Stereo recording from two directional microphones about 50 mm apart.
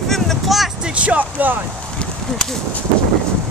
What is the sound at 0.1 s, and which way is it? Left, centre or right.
Vehicle, centre.